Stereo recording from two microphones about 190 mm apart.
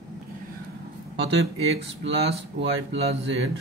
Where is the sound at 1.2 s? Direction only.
65° right (ahead or behind).